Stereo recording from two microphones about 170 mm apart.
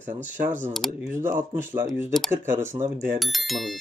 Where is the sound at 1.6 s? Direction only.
15° right (ahead or behind).